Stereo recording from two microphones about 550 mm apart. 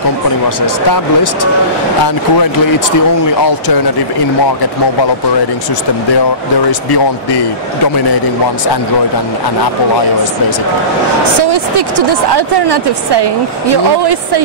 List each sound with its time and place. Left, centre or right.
0.8 s speech: left
3.4 s speech: left
12.4 s speech: right